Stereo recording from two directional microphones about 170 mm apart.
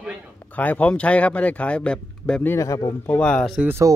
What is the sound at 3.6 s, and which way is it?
Speech, 15° right (ahead or behind).